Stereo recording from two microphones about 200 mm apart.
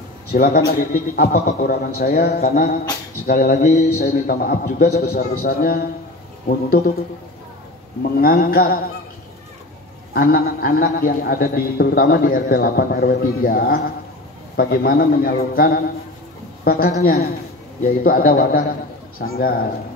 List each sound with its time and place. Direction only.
0.3 s a man's voice: 50° left (ahead or behind)
3.8 s a man's voice: 50° left (ahead or behind)
8.2 s a man's voice: 45° left (ahead or behind)
10.1 s a man's voice: 50° left (ahead or behind)